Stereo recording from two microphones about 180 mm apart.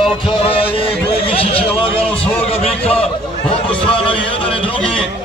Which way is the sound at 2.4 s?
30° left (ahead or behind).